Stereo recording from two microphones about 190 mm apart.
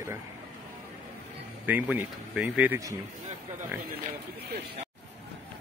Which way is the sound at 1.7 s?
10° right (ahead or behind).